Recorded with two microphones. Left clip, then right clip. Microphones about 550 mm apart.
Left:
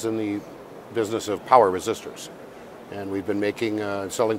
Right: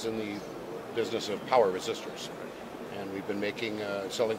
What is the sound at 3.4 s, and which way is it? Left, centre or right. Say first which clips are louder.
Speech: left 7 dB; left.